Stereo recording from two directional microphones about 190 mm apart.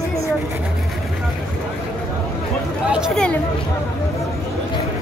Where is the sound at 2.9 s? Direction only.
Centre (ahead or behind).